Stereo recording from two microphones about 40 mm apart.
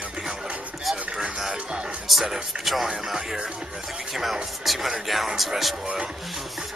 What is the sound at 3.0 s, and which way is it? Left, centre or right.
Speech, centre.